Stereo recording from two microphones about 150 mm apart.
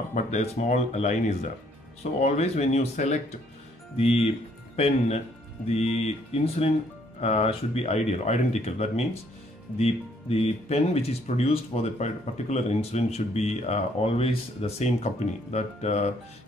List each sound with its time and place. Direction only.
0.1 s speech: 50° left (ahead or behind)
10.3 s speech: 45° left (ahead or behind)